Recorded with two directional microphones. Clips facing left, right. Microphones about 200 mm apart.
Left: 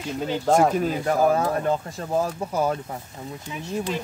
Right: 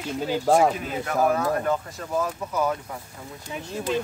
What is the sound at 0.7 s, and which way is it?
Mechanisms, 30° left (ahead or behind).